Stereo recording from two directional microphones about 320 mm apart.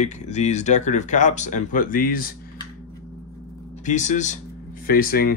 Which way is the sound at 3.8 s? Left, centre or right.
Left.